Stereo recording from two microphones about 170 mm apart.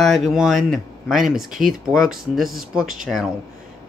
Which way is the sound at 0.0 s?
Centre (ahead or behind).